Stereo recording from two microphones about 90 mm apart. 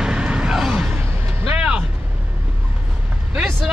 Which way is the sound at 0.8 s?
25° right (ahead or behind).